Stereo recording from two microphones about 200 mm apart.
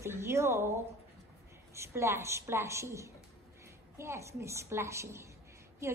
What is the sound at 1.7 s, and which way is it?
A woman's voice, 15° right (ahead or behind).